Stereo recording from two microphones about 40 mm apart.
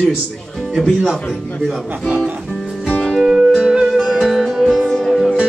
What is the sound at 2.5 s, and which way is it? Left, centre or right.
Music, centre.